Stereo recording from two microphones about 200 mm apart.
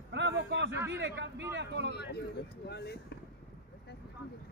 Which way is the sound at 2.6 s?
55° left (ahead or behind).